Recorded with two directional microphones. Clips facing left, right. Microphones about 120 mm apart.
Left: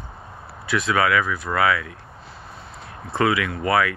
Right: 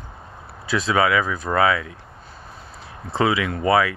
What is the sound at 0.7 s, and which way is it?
Speech, 35° right (ahead or behind).